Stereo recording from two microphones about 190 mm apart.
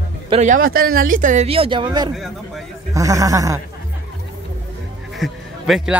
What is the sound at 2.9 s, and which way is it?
Speech, 15° right (ahead or behind).